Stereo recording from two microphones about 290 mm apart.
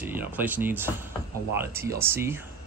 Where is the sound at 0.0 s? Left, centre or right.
Centre.